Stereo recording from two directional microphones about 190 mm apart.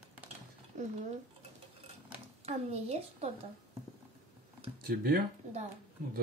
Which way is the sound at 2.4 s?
35° right (ahead or behind).